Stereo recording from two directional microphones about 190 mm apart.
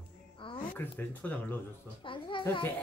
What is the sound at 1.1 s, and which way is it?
Speech, 10° left (ahead or behind).